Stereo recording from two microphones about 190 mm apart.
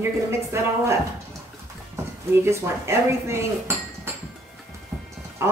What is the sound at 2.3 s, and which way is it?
Speech, 15° right (ahead or behind).